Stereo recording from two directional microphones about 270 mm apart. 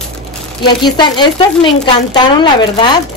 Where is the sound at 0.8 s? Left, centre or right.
Centre.